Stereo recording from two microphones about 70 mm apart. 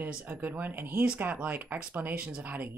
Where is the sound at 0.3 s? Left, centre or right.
Right.